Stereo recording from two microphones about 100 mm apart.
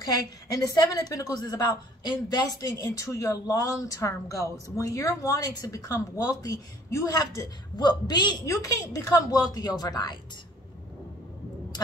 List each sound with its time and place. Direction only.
0.8 s a woman's voice: 35° left (ahead or behind)